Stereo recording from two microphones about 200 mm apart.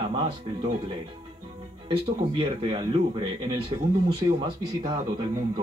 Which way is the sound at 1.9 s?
25° right (ahead or behind).